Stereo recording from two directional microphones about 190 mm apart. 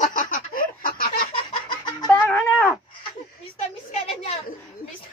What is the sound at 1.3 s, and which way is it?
Fowl, 25° left (ahead or behind).